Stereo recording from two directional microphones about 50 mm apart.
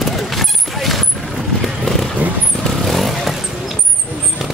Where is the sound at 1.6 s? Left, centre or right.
Centre.